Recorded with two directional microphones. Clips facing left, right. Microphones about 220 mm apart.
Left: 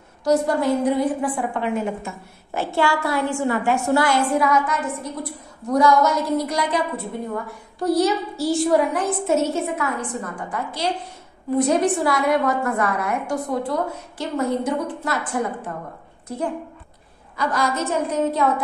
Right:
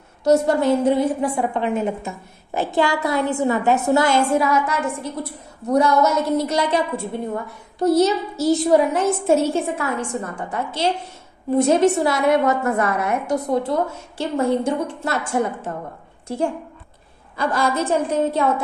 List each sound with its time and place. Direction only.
0.2 s a woman's voice: 25° right (ahead or behind)
7.8 s a woman's voice: 20° right (ahead or behind)